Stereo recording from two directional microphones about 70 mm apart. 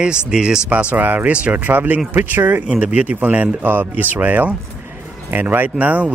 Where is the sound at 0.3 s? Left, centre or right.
Centre; by 2.7 s right.